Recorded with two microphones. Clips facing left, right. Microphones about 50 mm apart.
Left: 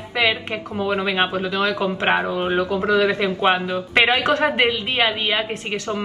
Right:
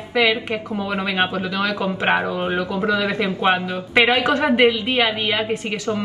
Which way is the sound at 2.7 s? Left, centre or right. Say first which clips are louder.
Left 3 dB; left.